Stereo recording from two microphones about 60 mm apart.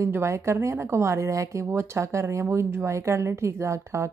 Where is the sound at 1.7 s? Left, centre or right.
Right.